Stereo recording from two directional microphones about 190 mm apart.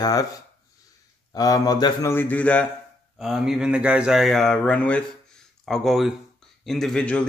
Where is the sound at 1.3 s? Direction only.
20° left (ahead or behind).